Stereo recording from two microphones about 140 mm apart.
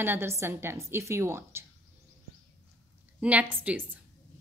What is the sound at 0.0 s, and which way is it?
A woman's voice, 15° right (ahead or behind).